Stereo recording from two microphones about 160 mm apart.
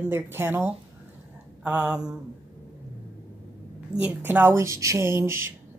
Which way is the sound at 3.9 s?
10° right (ahead or behind).